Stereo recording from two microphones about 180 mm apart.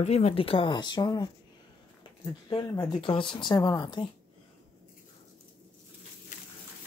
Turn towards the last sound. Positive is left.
turn(degrees=45)  # may be behind; listen again after turning